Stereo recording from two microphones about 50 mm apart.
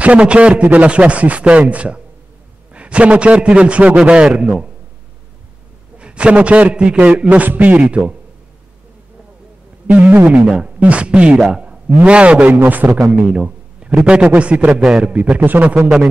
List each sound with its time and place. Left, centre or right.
0.0 s a man's voice: right
5.9 s a man's voice: right
7.0 s a man's voice: right
9.8 s a man's voice: right
12.6 s a man's voice: right
13.1 s a sound: right
14.0 s a man's voice: right
14.7 s a man's voice: centre
15.3 s a man's voice: right